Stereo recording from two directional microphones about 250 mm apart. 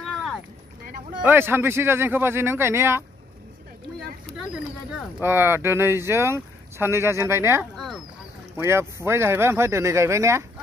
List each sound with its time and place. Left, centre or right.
0.0 s run: centre
1.2 s speech: centre
5.2 s speech: centre
7.7 s a sound: centre
8.5 s speech: centre